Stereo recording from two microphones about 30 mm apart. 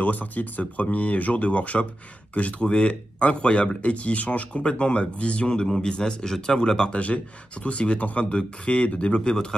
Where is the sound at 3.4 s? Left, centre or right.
Left.